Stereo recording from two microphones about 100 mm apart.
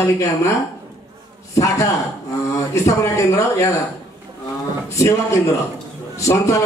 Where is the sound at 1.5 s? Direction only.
35° left (ahead or behind).